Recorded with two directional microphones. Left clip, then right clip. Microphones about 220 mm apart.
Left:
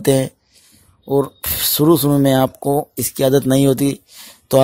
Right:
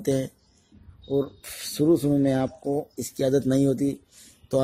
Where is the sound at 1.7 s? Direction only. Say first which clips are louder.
Left 7 dB; 40° left (ahead or behind).